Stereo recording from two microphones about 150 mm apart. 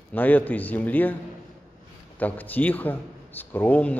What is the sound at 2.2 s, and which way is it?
A man's voice, 10° left (ahead or behind).